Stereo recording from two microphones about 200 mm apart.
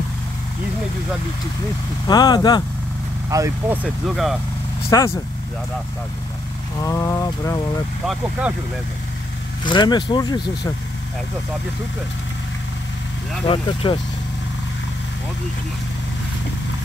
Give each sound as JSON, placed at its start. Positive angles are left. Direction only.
{"t": 2.0, "sound": "speech", "side_deg": 20}
{"t": 3.3, "sound": "speech", "side_deg": -15}
{"t": 4.9, "sound": "speech", "side_deg": 15}
{"t": 6.8, "sound": "speech", "side_deg": 15}
{"t": 8.1, "sound": "speech", "side_deg": -5}
{"t": 9.7, "sound": "speech", "side_deg": 20}
{"t": 13.5, "sound": "speech", "side_deg": 25}